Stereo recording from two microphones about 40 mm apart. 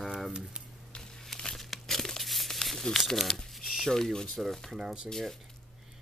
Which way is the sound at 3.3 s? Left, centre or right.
Centre.